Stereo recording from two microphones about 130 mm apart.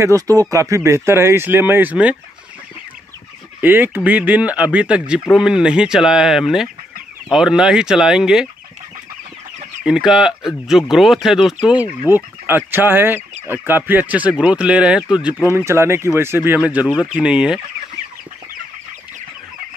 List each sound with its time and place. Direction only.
0.0 s speech: 25° right (ahead or behind)
3.6 s speech: 15° right (ahead or behind)
9.8 s speech: 5° right (ahead or behind)
15.5 s speech: 20° right (ahead or behind)